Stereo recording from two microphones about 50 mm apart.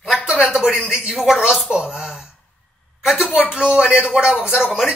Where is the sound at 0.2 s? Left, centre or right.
Centre.